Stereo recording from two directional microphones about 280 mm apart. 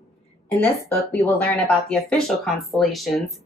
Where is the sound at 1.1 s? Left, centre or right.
Centre.